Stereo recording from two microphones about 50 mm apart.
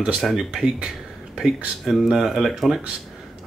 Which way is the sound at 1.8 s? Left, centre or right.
Centre.